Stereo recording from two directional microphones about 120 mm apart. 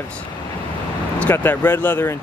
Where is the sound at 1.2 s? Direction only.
20° left (ahead or behind).